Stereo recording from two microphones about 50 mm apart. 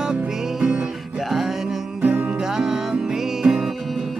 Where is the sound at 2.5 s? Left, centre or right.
Centre.